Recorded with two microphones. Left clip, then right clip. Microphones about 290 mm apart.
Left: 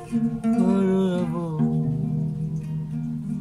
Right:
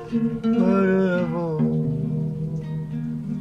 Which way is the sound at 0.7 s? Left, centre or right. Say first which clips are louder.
Right 5 dB; centre.